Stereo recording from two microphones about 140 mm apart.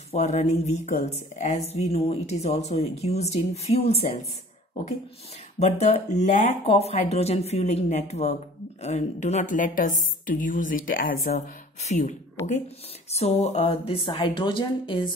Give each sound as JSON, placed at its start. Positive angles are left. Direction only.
{"t": 0.1, "sound": "a woman's voice", "side_deg": 55}
{"t": 5.6, "sound": "a woman's voice", "side_deg": 50}
{"t": 11.3, "sound": "speech", "side_deg": 55}